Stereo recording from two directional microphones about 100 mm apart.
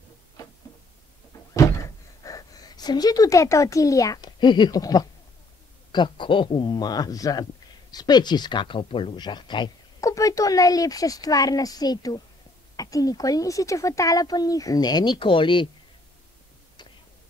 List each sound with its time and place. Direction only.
0.4 s a sound: 40° left (ahead or behind)
2.2 s speech: 35° left (ahead or behind)
4.4 s speech: 50° left (ahead or behind)
5.9 s speech: 50° left (ahead or behind)
9.9 s speech: 35° left (ahead or behind); by 15.7 s 55° left (ahead or behind)